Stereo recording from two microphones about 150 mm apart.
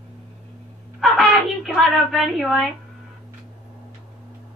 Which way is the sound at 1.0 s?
Centre (ahead or behind).